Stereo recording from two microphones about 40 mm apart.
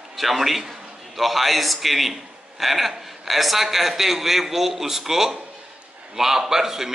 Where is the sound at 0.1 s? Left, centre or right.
Centre.